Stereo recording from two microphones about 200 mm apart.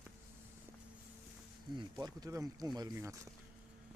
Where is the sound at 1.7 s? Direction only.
20° right (ahead or behind).